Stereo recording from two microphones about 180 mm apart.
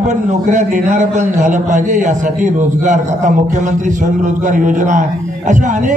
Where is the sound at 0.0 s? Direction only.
40° right (ahead or behind).